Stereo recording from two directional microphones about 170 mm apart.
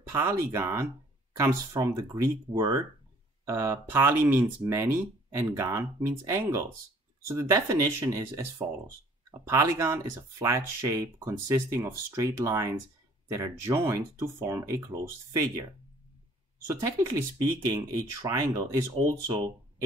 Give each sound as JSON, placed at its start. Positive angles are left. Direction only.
{"t": 0.0, "sound": "speech", "side_deg": -15}
{"t": 16.8, "sound": "speech", "side_deg": -20}